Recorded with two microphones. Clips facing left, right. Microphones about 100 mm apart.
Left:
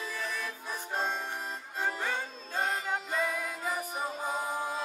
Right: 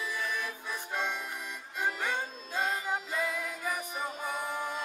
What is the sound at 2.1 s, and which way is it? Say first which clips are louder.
Music: right 1 dB; 15° right (ahead or behind).